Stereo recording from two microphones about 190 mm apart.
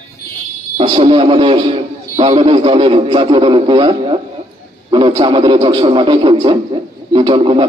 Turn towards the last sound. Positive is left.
turn(degrees=-30)  # may be behind; listen again after turning